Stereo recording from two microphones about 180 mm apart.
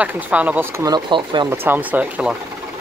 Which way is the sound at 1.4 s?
10° right (ahead or behind).